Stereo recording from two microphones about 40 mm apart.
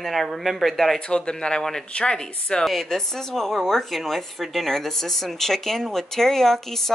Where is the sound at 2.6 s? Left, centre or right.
Centre.